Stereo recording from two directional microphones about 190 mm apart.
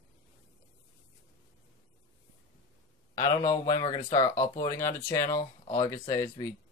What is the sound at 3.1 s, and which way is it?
Speech, 20° left (ahead or behind).